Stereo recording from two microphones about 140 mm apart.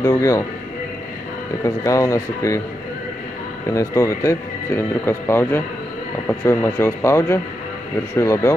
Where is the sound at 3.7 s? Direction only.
25° left (ahead or behind).